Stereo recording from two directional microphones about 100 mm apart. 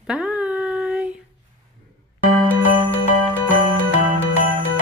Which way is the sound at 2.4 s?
15° left (ahead or behind).